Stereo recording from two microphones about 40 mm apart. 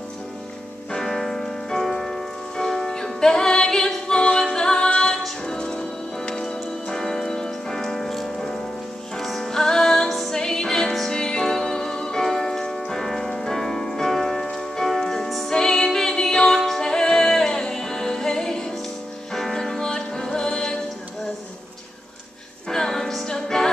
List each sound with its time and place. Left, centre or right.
0.9 s music: centre
9.5 s music: centre
10.0 s music: centre
10.3 s music: centre
15.5 s music: centre
22.7 s music: centre